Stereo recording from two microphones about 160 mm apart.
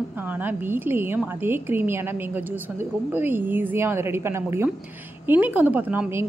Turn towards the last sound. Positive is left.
turn(degrees=-10)  # may be behind; listen again after turning